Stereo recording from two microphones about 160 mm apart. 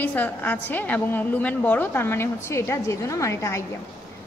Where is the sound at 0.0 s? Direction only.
10° left (ahead or behind).